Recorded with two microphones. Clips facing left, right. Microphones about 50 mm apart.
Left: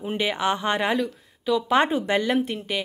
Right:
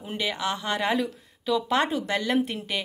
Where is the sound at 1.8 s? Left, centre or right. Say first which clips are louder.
Left 4 dB; left.